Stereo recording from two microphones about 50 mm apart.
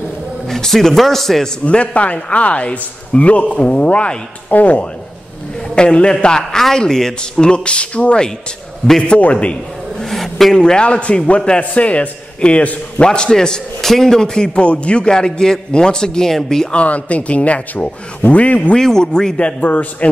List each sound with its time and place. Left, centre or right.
0.5 s a man's voice: centre
1.7 s a man's voice: left
5.8 s a man's voice: centre
10.0 s a sound: centre
10.6 s a man's voice: centre
16.7 s a man's voice: left
18.8 s a man's voice: centre
19.6 s a man's voice: left